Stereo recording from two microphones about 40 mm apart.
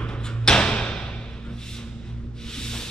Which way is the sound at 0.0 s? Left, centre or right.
Left.